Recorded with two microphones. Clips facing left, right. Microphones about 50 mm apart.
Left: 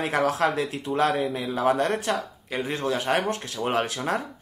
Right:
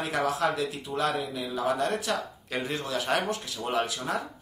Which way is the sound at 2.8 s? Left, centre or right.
Left.